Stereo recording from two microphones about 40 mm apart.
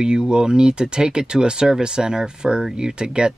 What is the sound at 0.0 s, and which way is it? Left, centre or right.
Speech, right.